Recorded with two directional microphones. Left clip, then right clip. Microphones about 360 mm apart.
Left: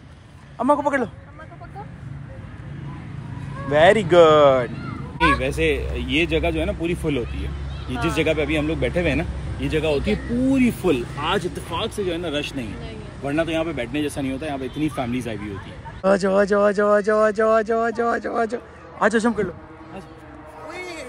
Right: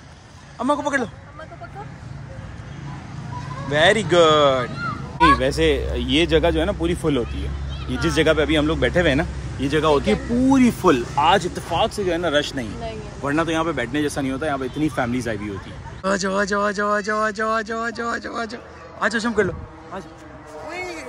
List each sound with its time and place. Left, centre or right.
0.6 s speech: centre
3.7 s speech: centre
9.8 s speech: right
10.5 s speech: centre
20.7 s music: centre